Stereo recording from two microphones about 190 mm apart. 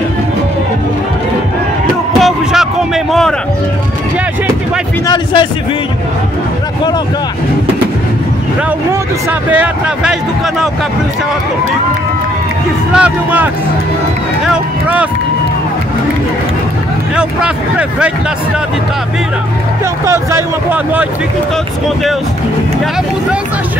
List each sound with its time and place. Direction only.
2.1 s a sound: centre (ahead or behind)
5.0 s a man's voice: 25° left (ahead or behind)
9.5 s speech: 5° right (ahead or behind)
12.9 s speech: 5° right (ahead or behind)
14.5 s speech: 5° right (ahead or behind)
17.1 s speech: 5° right (ahead or behind)
20.1 s speech: 15° right (ahead or behind)